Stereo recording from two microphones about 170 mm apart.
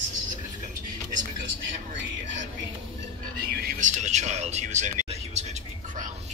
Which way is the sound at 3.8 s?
45° right (ahead or behind).